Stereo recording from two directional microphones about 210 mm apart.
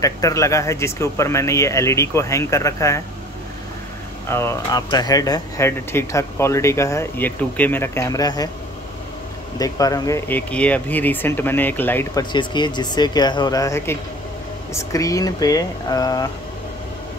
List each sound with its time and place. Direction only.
0.0 s speech: 15° left (ahead or behind)
4.3 s speech: 10° left (ahead or behind)
9.6 s speech: 15° left (ahead or behind)